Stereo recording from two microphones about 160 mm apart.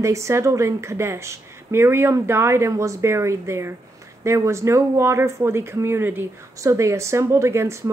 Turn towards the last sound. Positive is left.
turn(degrees=-15)  # may be behind; listen again after turning